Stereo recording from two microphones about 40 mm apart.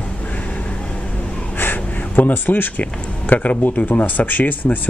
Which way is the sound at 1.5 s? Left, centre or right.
Left.